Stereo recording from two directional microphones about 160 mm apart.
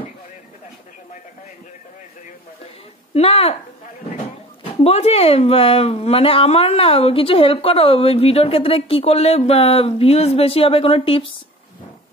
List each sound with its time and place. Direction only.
3.2 s speech: 40° left (ahead or behind)
4.8 s speech: 40° left (ahead or behind)